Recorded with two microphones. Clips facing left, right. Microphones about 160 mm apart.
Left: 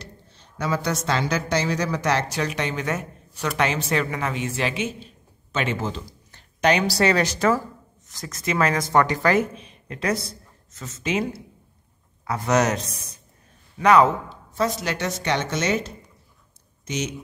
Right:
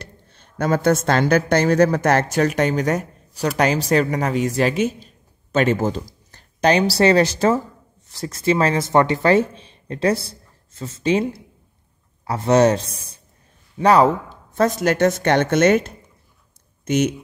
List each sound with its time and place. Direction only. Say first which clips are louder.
0.0 s a woman's voice: right 2 dB; 55° right (ahead or behind); by 11.2 s 30° right (ahead or behind)
12.3 s a man's voice: right 6 dB; 30° right (ahead or behind)
14.5 s a woman's voice: right 7 dB; 55° right (ahead or behind)